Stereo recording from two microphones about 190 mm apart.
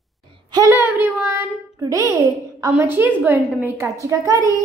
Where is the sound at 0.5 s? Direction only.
15° right (ahead or behind).